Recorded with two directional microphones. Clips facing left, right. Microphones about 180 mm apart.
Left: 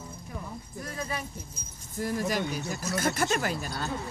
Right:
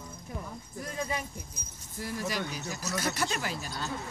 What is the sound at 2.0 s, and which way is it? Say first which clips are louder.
Speech: left 5 dB; 45° left (ahead or behind).